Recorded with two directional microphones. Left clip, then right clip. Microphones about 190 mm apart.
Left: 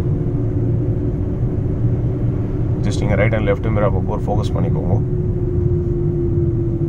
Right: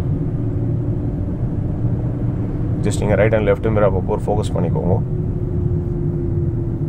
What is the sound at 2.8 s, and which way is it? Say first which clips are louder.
Speech: right 3 dB; 30° right (ahead or behind).